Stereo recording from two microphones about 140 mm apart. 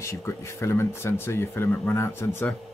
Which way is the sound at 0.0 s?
20° left (ahead or behind).